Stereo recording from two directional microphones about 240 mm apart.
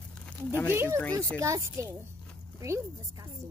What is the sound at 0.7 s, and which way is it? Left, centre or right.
Speech, centre.